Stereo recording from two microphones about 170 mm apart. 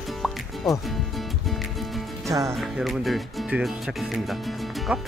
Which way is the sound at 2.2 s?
20° right (ahead or behind).